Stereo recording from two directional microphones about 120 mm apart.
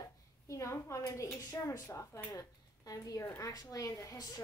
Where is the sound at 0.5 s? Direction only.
25° left (ahead or behind).